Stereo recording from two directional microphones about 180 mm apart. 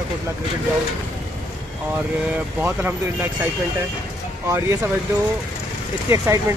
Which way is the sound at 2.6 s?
10° right (ahead or behind).